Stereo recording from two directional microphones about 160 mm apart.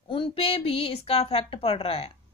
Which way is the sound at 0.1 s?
35° left (ahead or behind).